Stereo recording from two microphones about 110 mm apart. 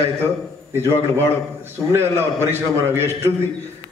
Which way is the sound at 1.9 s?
20° right (ahead or behind).